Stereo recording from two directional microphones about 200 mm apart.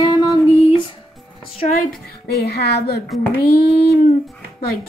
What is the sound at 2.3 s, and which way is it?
A woman's voice, 55° left (ahead or behind).